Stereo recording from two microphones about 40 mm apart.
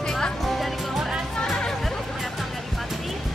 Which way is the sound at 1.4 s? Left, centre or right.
Centre.